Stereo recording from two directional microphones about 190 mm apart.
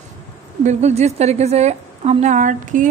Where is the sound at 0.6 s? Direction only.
35° right (ahead or behind).